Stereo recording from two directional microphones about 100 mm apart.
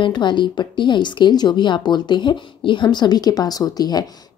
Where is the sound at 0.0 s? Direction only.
50° left (ahead or behind).